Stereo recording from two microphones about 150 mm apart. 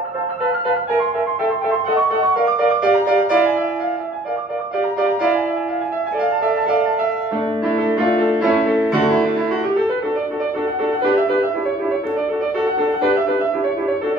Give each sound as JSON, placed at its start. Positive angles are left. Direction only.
{"t": 2.8, "sound": "music", "side_deg": -5}
{"t": 8.4, "sound": "music", "side_deg": 0}